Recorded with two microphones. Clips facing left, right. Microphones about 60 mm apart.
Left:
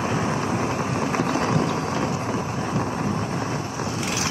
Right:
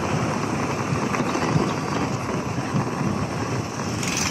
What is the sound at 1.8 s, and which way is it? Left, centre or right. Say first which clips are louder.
Wind noise: even; right.